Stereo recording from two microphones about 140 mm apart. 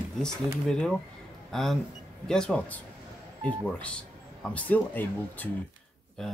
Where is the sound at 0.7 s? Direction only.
5° left (ahead or behind).